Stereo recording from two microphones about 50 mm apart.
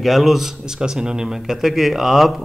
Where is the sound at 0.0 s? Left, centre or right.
Centre.